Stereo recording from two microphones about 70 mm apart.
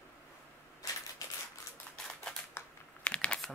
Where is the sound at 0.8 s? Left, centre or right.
Left.